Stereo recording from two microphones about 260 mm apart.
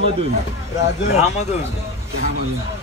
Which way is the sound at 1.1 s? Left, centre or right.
Left.